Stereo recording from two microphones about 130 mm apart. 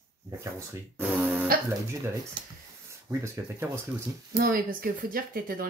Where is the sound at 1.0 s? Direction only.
15° right (ahead or behind).